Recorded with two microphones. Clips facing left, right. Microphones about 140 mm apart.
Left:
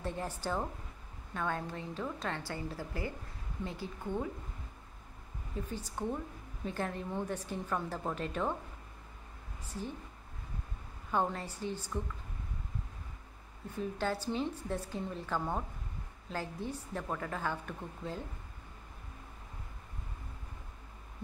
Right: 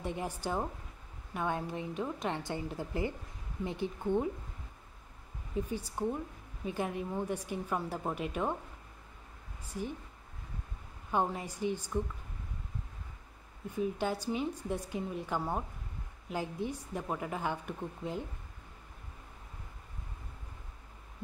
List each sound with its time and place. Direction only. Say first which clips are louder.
0.0 s a woman's voice: right 1 dB; 15° right (ahead or behind)
5.7 s a woman's voice: even; 10° right (ahead or behind)
9.7 s a woman's voice: right 3 dB; 15° right (ahead or behind)
11.1 s a woman's voice: right 1 dB; 15° right (ahead or behind)
13.7 s a woman's voice: right 2 dB; 15° right (ahead or behind)